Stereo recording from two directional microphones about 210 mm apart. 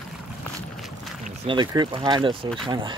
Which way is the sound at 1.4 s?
30° right (ahead or behind).